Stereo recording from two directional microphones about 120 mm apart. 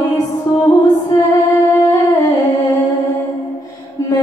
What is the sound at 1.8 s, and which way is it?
Humming, 30° left (ahead or behind).